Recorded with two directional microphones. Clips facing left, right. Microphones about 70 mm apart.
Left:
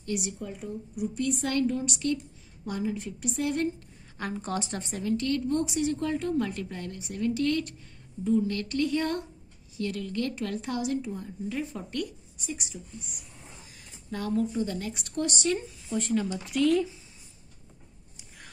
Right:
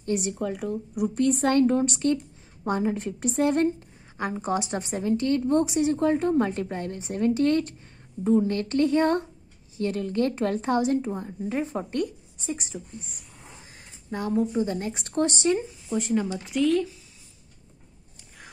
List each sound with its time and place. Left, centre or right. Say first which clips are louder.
0.0 s speech: right 5 dB; right
0.3 s speech: right 8 dB; right
1.1 s a woman's voice: right 7 dB; right
4.2 s a woman's voice: right 5 dB; centre
8.2 s a woman's voice: right 4 dB; right
13.7 s a sound: right 3 dB; right
14.5 s speech: right 4 dB; right
15.5 s speech: right 4 dB; centre
16.4 s speech: right 1 dB; centre